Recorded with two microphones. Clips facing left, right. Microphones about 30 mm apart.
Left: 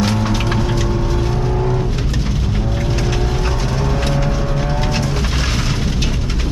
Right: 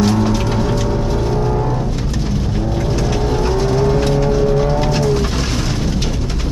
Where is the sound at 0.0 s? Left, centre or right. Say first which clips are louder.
Right 3 dB; left.